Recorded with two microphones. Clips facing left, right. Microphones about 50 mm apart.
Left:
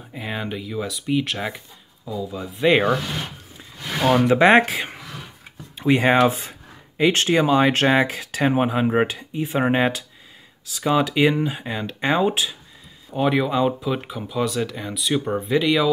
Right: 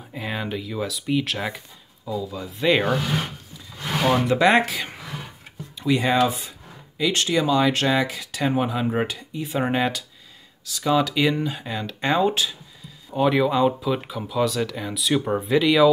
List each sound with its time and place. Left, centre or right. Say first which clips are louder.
0.1 s speech: even; centre
4.3 s speech: left 5 dB; left; by 15.9 s centre